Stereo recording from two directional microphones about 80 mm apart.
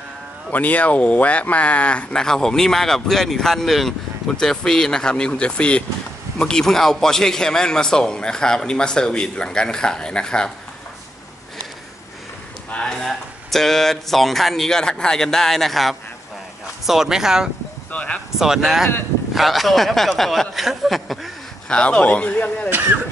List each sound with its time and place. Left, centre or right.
0.5 s speech: centre
12.7 s speech: centre
17.9 s speech: centre
18.4 s speech: centre
21.6 s speech: centre